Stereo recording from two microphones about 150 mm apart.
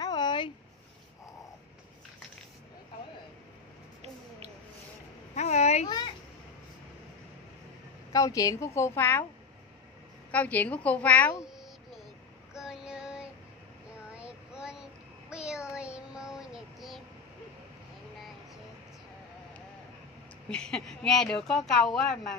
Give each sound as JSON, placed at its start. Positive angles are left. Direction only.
{"t": 0.0, "sound": "a sound", "side_deg": 30}
{"t": 5.3, "sound": "a sound", "side_deg": 50}
{"t": 8.1, "sound": "a woman's voice", "side_deg": 25}
{"t": 10.3, "sound": "a woman's voice", "side_deg": 10}
{"t": 12.5, "sound": "child singing", "side_deg": -5}
{"t": 20.4, "sound": "speech", "side_deg": 5}